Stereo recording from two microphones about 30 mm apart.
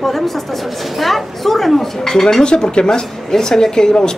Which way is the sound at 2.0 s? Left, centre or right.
Left.